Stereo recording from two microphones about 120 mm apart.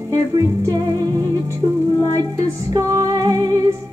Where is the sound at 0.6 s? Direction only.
35° right (ahead or behind).